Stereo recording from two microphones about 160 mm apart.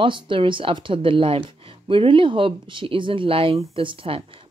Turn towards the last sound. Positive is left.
turn(degrees=-35)  # may be behind; listen again after turning